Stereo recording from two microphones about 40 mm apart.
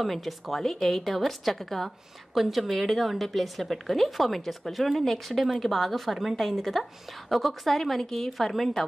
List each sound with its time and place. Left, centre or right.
0.0 s a woman's voice: centre